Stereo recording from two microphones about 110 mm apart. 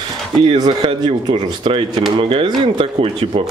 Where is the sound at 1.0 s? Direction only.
50° right (ahead or behind).